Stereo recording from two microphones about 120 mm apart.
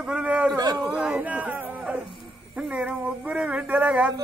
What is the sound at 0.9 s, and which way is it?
Speech, 10° right (ahead or behind).